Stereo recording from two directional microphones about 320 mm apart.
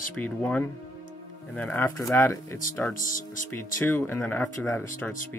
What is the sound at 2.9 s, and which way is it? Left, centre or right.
Speech, left.